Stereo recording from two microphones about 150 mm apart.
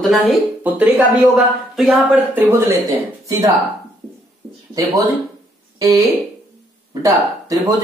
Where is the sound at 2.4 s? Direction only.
20° right (ahead or behind).